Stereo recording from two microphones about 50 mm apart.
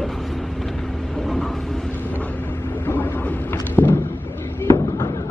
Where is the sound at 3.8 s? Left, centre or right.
Left.